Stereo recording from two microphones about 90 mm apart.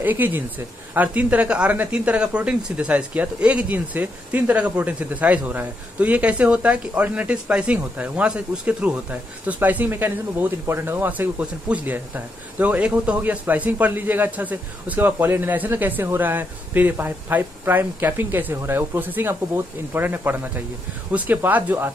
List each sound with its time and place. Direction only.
0.0 s speech: 20° right (ahead or behind)